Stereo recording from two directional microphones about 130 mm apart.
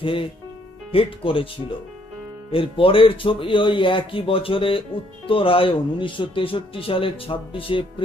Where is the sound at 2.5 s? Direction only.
45° left (ahead or behind).